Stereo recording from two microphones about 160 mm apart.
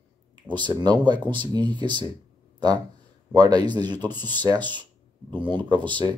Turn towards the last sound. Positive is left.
turn(degrees=-30)  # may be behind; listen again after turning